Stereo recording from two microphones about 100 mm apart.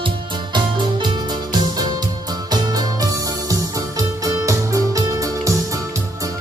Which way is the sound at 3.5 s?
35° right (ahead or behind).